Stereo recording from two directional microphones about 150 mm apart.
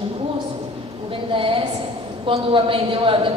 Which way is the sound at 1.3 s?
35° right (ahead or behind).